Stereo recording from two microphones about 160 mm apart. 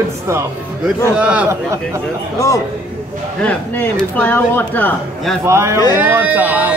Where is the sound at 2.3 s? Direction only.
20° left (ahead or behind).